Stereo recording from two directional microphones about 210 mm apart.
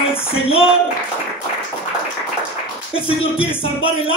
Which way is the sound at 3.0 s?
25° left (ahead or behind).